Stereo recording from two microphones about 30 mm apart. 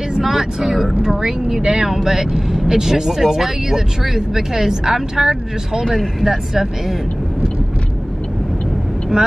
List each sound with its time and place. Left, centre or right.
0.2 s speech: centre
1.0 s speech: centre
1.9 s speech: centre